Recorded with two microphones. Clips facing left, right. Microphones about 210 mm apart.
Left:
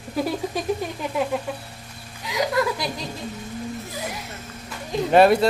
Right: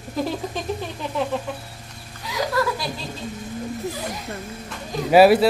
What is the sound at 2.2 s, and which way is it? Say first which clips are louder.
Chuckle: left 1 dB; 20° left (ahead or behind).